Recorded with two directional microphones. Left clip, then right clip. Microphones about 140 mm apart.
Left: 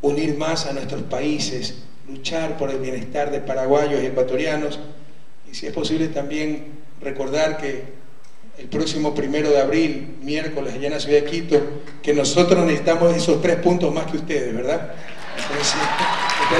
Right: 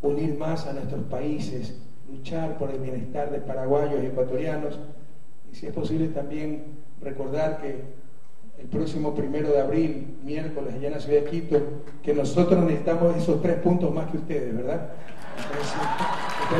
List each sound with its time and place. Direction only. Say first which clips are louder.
0.0 s a man's voice: left 6 dB; 10° left (ahead or behind)